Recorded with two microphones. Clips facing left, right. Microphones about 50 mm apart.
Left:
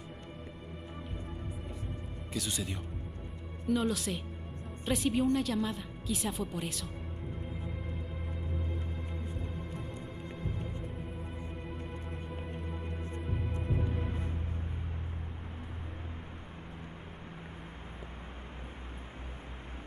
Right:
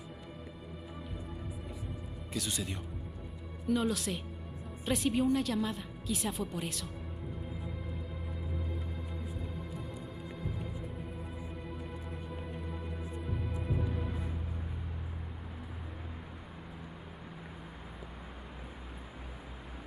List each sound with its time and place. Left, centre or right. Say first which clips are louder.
2.3 s a woman's voice: even; centre
10.4 s music: left 1 dB; centre
12.3 s music: even; centre